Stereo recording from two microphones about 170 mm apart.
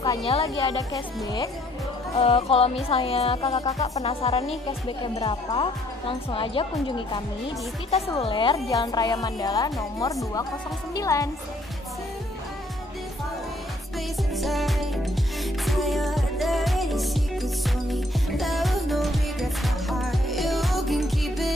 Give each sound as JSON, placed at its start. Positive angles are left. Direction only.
{"t": 0.0, "sound": "a sound", "side_deg": 20}
{"t": 0.3, "sound": "a woman's voice", "side_deg": 35}
{"t": 0.9, "sound": "speech", "side_deg": 20}
{"t": 2.1, "sound": "a woman's voice", "side_deg": 35}
{"t": 8.2, "sound": "speech", "side_deg": 30}
{"t": 13.9, "sound": "music", "side_deg": 0}